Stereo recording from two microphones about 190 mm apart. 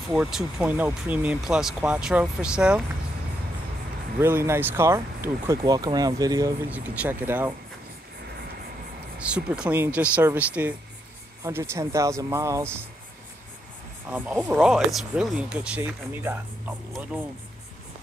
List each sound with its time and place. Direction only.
0.1 s speech: 5° right (ahead or behind)
4.2 s speech: 15° right (ahead or behind)
6.7 s speech: 10° right (ahead or behind)
9.2 s speech: 5° right (ahead or behind)
14.1 s speech: 5° right (ahead or behind)